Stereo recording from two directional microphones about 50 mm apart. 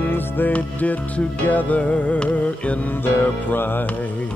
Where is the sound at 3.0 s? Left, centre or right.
Left.